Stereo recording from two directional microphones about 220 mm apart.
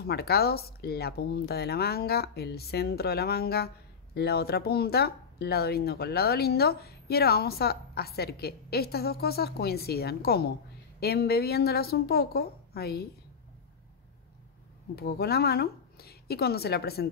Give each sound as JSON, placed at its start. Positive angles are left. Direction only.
{"t": 0.0, "sound": "speech", "side_deg": 45}
{"t": 15.0, "sound": "speech", "side_deg": 45}